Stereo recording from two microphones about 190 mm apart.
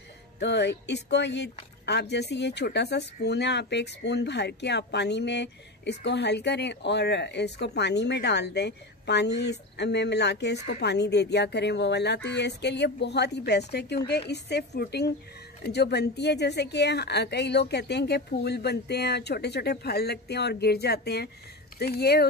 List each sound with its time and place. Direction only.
0.4 s speech: 65° left (ahead or behind)